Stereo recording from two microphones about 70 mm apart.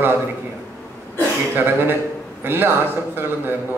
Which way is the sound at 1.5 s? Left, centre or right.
Right.